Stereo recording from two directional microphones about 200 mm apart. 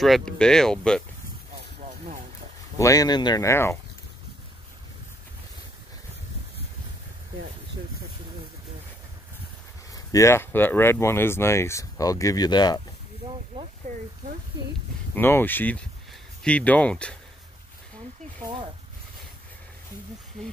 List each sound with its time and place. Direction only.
0.0 s speech: centre (ahead or behind)
1.8 s vehicle: 40° right (ahead or behind)
2.8 s speech: 15° left (ahead or behind)
9.9 s speech: 15° left (ahead or behind)
13.9 s speech: 40° right (ahead or behind)
15.1 s speech: 10° left (ahead or behind)